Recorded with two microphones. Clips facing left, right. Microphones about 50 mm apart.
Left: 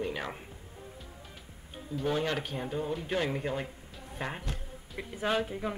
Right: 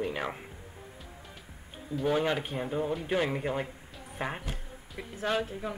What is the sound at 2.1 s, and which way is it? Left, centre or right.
Speech, centre.